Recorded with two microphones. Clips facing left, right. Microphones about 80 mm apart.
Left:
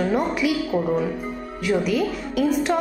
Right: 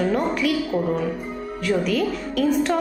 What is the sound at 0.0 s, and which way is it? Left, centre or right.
A woman's voice, centre.